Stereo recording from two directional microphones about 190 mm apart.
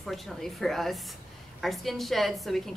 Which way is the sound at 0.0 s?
Centre (ahead or behind).